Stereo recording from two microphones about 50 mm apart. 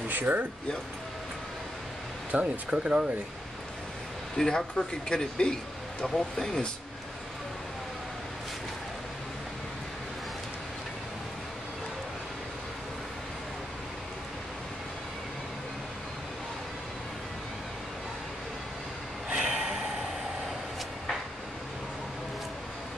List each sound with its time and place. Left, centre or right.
0.1 s speech: right
2.3 s speech: right
2.7 s speech: centre
4.4 s speech: centre
19.2 s snort: centre